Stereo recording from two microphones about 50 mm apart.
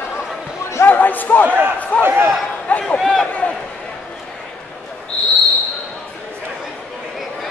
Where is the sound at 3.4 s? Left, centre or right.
Left.